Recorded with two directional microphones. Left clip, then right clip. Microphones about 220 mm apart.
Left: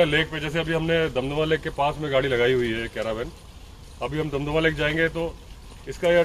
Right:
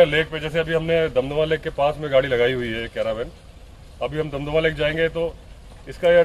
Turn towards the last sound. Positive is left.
turn(degrees=0)  # may be behind; listen again after turning